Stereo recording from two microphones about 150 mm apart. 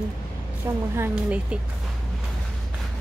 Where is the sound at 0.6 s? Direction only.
20° right (ahead or behind).